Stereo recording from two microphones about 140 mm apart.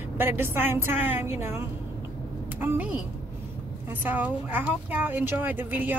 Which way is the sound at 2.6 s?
10° right (ahead or behind).